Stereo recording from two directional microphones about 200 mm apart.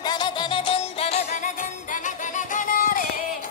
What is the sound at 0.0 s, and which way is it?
Music, 20° left (ahead or behind).